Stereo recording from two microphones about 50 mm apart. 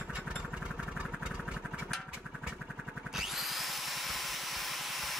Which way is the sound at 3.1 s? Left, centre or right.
Centre.